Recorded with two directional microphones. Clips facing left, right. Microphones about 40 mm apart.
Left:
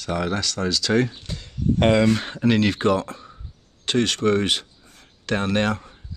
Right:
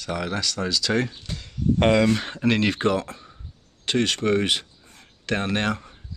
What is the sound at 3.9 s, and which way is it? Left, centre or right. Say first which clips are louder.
Speech: left 2 dB; right.